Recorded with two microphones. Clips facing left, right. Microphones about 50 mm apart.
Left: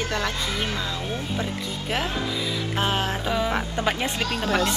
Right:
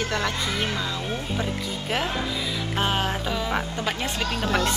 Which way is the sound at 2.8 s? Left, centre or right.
Centre.